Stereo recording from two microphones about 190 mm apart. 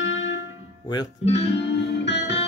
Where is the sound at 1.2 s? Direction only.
35° left (ahead or behind).